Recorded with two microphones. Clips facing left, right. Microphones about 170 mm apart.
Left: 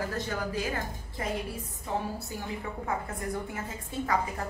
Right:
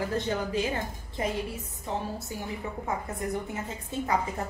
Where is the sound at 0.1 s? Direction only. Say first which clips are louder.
Right 4 dB; 25° right (ahead or behind).